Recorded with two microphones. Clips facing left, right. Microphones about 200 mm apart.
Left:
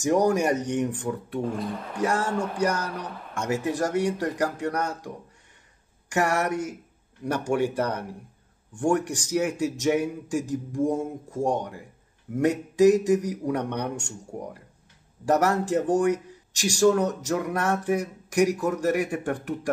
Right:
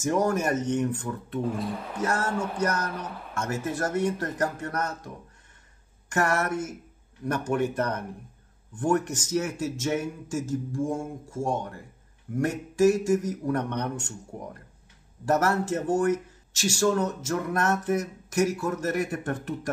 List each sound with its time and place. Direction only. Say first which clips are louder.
0.0 s speech: left 3 dB; 15° left (ahead or behind)
1.4 s speech: right 2 dB; 5° right (ahead or behind)
2.0 s speech: left 3 dB; 15° left (ahead or behind)
2.3 s speech: left 2 dB; centre (ahead or behind)
2.6 s speech: left 2 dB; 10° left (ahead or behind)
2.9 s speech: left 1 dB; centre (ahead or behind)
3.3 s speech: left 4 dB; 15° left (ahead or behind)